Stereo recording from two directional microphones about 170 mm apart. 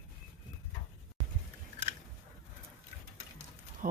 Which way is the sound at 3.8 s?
50° right (ahead or behind).